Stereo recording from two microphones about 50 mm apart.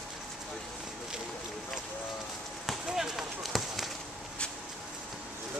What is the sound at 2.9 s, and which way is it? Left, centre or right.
Run, centre.